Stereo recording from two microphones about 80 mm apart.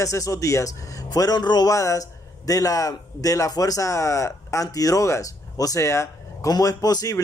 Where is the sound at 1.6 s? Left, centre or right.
Left.